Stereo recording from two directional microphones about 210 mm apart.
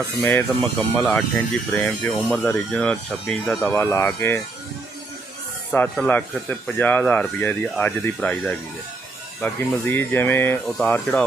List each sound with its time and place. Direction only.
0.2 s speech: 10° left (ahead or behind)
5.7 s speech: 5° left (ahead or behind)